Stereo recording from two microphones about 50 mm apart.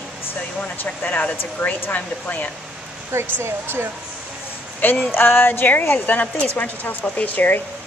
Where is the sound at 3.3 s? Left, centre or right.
Right.